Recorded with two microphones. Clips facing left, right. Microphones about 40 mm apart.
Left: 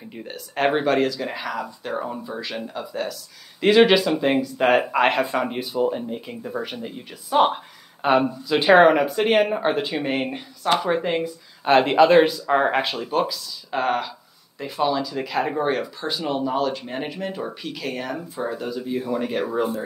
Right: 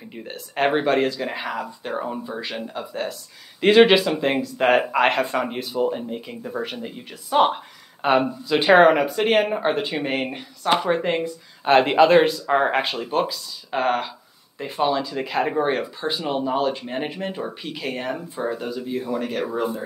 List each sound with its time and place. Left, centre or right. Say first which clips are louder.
0.1 s speech: even; centre
1.0 s speech: even; centre
1.9 s speech: right 1 dB; centre
12.9 s speech: even; centre
14.6 s speech: right 1 dB; right
15.1 s speech: right 1 dB; centre
16.8 s speech: right 2 dB; centre
17.1 s speech: even; right
18.4 s speech: even; centre